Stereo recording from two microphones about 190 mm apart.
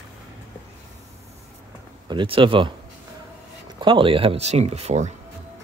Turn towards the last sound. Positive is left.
turn(degrees=-35)  # may be behind; listen again after turning